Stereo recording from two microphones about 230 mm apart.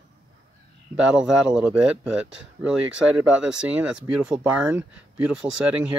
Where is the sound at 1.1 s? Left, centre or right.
Centre.